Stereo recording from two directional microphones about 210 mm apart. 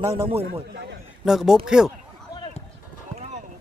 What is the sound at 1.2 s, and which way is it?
Speech, centre (ahead or behind).